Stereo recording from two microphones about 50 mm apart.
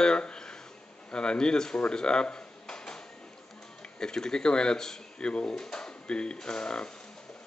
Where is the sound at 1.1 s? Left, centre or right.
Centre.